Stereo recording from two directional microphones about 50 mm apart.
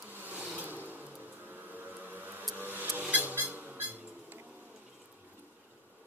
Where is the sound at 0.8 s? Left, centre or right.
Right.